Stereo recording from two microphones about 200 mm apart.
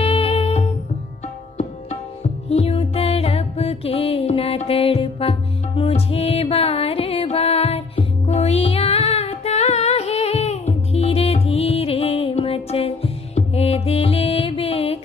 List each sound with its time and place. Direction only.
0.0 s music: 30° left (ahead or behind)
2.5 s music: 30° left (ahead or behind)